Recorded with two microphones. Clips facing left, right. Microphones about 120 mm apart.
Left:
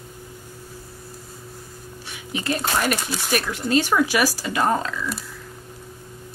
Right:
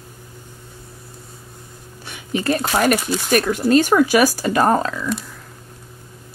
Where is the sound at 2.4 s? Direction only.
45° right (ahead or behind).